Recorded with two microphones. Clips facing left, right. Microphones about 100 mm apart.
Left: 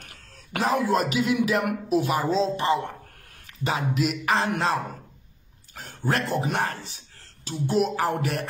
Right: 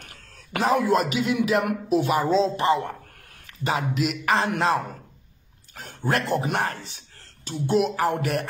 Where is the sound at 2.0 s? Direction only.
45° right (ahead or behind).